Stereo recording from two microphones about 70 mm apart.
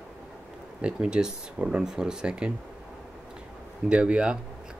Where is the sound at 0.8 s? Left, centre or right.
Centre.